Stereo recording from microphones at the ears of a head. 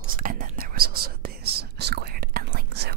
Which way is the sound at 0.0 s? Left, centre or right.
Right.